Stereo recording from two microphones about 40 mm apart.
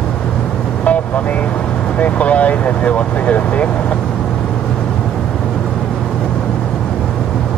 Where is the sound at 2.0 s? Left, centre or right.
Left.